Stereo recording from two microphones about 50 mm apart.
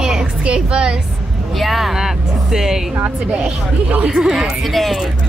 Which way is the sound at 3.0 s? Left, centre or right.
Right.